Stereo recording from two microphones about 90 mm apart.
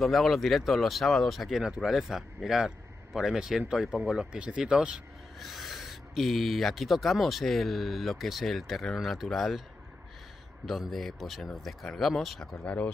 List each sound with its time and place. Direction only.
0.0 s speech: centre (ahead or behind)
10.6 s speech: centre (ahead or behind)
12.6 s speech: 15° left (ahead or behind)